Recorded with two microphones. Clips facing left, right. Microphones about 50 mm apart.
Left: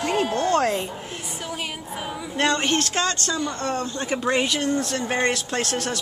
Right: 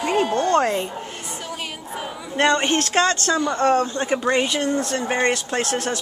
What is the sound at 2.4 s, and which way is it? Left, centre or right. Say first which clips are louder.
Speech: right 3 dB; centre.